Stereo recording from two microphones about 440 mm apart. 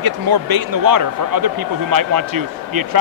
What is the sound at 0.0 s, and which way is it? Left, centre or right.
Speech, right.